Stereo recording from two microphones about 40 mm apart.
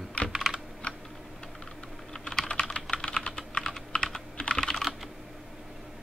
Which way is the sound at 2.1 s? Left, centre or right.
Centre.